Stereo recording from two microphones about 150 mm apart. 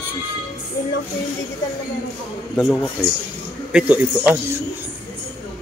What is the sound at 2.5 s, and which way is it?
Speech, centre (ahead or behind).